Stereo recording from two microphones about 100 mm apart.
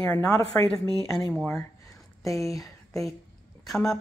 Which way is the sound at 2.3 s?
30° left (ahead or behind).